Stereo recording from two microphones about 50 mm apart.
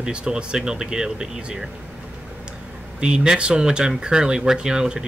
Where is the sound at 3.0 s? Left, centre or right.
Centre.